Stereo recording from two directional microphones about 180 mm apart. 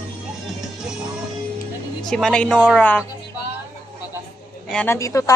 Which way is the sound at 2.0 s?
Centre (ahead or behind).